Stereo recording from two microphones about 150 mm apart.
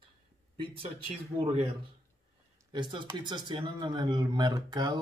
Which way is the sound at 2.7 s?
30° right (ahead or behind).